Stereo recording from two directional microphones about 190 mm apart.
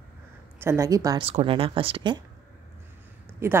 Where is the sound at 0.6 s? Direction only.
15° right (ahead or behind).